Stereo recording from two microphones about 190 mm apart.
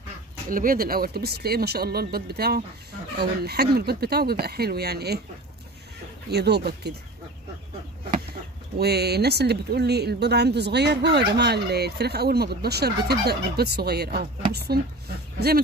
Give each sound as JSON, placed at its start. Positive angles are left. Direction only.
{"t": 0.5, "sound": "speech", "side_deg": -45}
{"t": 6.3, "sound": "speech", "side_deg": -60}
{"t": 8.7, "sound": "speech", "side_deg": -60}